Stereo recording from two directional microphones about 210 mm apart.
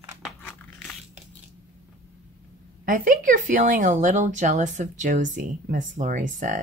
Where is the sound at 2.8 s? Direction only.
40° right (ahead or behind).